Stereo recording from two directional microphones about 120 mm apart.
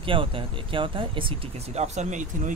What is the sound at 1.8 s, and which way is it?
Speech, 85° right.